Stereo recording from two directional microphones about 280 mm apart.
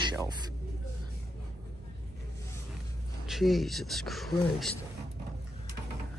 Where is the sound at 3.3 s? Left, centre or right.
Centre.